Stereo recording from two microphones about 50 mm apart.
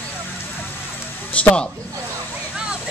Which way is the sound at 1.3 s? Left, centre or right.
Left.